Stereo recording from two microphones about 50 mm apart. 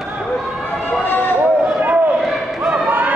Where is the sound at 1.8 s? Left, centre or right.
Right.